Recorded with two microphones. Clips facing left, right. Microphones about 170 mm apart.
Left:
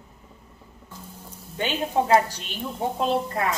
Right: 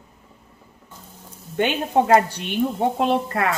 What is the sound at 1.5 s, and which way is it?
A woman's voice, 65° right (ahead or behind).